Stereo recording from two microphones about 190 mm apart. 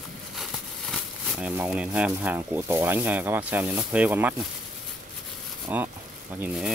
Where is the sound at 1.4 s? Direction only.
5° right (ahead or behind).